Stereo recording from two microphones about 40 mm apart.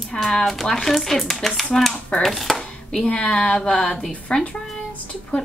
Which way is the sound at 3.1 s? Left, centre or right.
Left.